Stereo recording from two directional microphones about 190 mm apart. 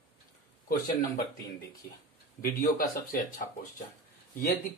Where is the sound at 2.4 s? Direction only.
45° left (ahead or behind).